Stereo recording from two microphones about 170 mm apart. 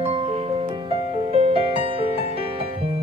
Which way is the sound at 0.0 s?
35° right (ahead or behind).